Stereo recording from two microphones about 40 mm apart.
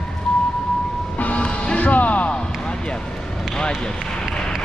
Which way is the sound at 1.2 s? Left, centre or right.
Left.